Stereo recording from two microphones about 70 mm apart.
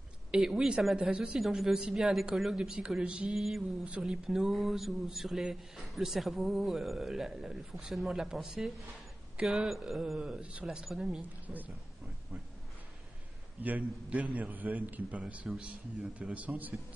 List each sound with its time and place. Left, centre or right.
0.3 s a woman's voice: centre
11.4 s speech: right
13.6 s a man's voice: right